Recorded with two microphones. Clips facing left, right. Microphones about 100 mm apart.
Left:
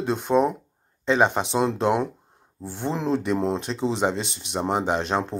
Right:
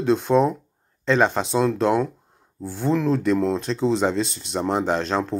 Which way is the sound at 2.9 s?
25° left (ahead or behind).